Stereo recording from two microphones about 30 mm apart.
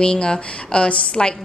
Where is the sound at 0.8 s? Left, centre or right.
Left.